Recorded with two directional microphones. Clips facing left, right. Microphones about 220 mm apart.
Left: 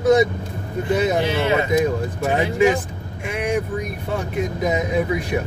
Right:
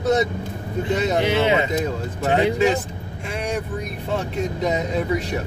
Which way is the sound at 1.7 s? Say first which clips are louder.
Left 5 dB; 15° left (ahead or behind).